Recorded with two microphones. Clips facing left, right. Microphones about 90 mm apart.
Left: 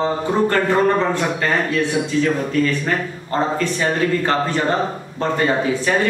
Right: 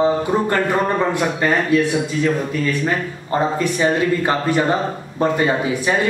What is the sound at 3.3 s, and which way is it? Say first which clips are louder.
A man's voice: right 1 dB; 15° right (ahead or behind).